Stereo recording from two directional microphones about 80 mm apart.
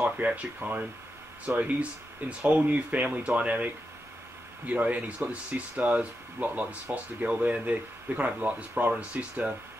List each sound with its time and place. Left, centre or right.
0.0 s speech: centre